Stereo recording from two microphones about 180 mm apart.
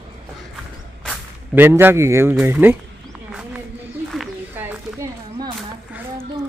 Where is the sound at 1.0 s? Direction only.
10° right (ahead or behind).